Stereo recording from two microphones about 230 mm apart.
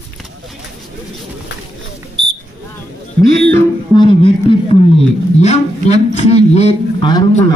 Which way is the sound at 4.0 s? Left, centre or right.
Left.